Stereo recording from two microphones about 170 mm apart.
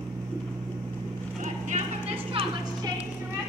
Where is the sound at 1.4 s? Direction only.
40° right (ahead or behind).